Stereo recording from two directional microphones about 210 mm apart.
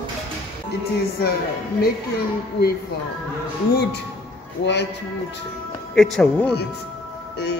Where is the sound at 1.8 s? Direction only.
45° left (ahead or behind).